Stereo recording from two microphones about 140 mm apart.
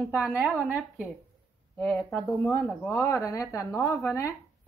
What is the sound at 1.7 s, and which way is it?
Speech, 10° left (ahead or behind).